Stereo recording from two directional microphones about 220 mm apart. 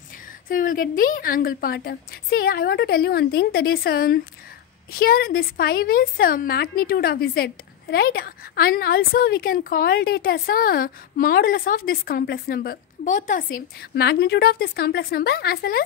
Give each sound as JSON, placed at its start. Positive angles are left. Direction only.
{"t": 0.5, "sound": "a woman's voice", "side_deg": 40}